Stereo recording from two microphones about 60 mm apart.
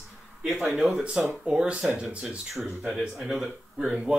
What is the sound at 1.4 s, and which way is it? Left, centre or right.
Speech, centre.